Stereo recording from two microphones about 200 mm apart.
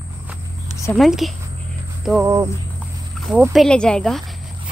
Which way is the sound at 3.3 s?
5° right (ahead or behind).